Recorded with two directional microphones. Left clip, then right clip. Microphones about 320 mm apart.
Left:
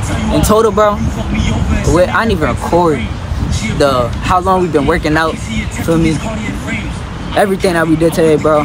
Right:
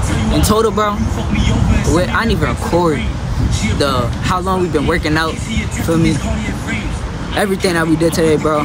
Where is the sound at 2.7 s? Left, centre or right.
Centre.